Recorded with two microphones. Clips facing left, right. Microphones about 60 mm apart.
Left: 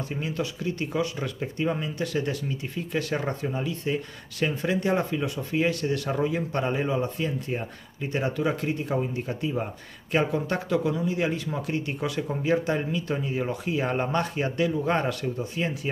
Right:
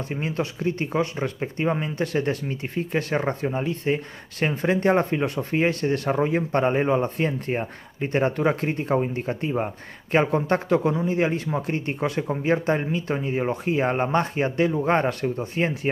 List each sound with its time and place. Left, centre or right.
0.1 s speech: right